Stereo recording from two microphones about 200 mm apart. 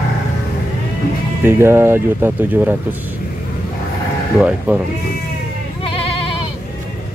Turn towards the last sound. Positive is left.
turn(degrees=30)  # may be behind; listen again after turning